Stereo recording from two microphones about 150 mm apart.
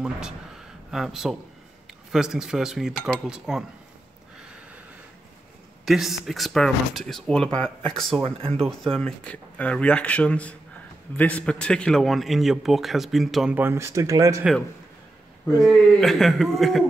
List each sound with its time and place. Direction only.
0.9 s a man's voice: centre (ahead or behind)
5.9 s a man's voice: centre (ahead or behind)
13.6 s speech: 15° right (ahead or behind)
15.6 s a man's voice: centre (ahead or behind)